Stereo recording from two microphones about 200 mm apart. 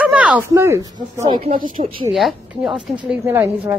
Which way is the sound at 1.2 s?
30° right (ahead or behind).